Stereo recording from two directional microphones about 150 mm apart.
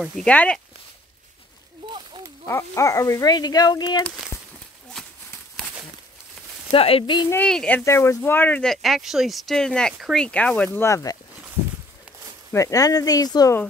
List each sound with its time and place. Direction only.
0.0 s speech: 5° left (ahead or behind)
2.4 s speech: 20° left (ahead or behind)
6.7 s speech: 40° left (ahead or behind)
7.4 s speech: 5° left (ahead or behind)
7.8 s speech: 20° left (ahead or behind)
12.5 s speech: 25° left (ahead or behind)